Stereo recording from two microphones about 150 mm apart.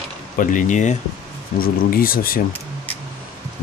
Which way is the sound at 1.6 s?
75° left (ahead or behind).